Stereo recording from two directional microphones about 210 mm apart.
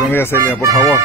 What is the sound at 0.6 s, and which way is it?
Speech, 15° right (ahead or behind).